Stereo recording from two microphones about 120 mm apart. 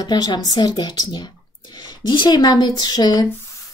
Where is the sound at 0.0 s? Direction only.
35° left (ahead or behind).